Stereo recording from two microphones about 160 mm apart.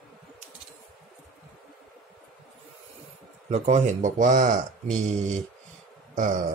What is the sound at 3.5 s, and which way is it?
Speech, 40° right (ahead or behind).